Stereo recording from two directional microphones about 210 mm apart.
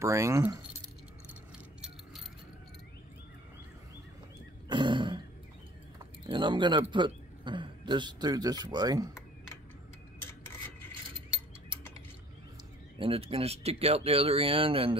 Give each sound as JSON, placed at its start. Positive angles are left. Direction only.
{"t": 0.0, "sound": "speech", "side_deg": -15}
{"t": 4.6, "sound": "throat clearing", "side_deg": -20}
{"t": 6.2, "sound": "a man's voice", "side_deg": -20}
{"t": 13.0, "sound": "speech", "side_deg": -25}